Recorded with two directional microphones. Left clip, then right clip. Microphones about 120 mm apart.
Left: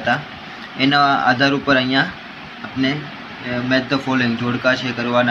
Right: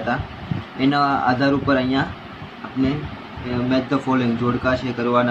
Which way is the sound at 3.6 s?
15° left (ahead or behind).